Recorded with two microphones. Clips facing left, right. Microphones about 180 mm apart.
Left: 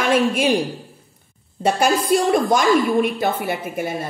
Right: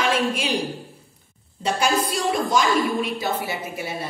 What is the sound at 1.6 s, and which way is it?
A woman's voice, 55° left (ahead or behind).